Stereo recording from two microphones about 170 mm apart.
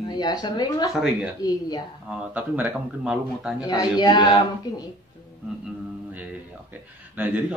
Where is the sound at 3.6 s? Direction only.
25° left (ahead or behind).